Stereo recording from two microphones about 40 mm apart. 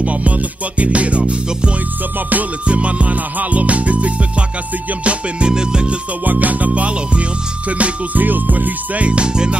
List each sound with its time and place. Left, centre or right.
0.0 s music: right
5.0 s music: right
6.2 s music: right
9.0 s music: right